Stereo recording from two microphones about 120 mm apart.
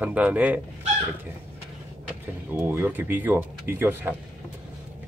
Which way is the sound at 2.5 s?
15° right (ahead or behind).